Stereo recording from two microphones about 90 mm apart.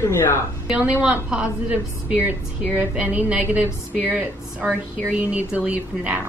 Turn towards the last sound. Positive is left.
turn(degrees=-15)  # may be behind; listen again after turning